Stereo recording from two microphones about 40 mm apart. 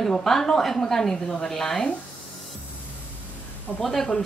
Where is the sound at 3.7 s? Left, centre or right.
Right.